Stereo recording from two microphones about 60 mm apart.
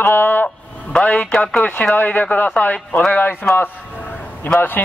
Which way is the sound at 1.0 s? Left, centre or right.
Left.